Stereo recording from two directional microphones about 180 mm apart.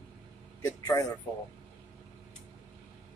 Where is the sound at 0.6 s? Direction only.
20° left (ahead or behind).